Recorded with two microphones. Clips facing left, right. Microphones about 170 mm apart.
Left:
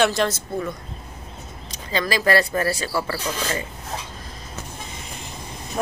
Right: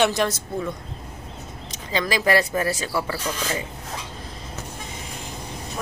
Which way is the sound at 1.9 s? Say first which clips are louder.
Left 1 dB; 15° right (ahead or behind).